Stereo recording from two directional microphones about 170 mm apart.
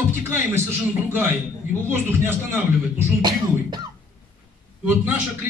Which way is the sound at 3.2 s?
25° right (ahead or behind).